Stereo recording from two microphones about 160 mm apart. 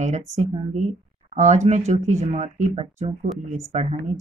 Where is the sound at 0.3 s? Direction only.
45° right (ahead or behind).